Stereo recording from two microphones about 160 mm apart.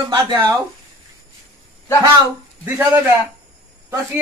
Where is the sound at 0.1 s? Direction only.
20° right (ahead or behind).